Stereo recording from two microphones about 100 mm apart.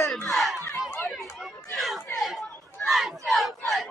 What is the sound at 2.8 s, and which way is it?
Crowd, centre (ahead or behind).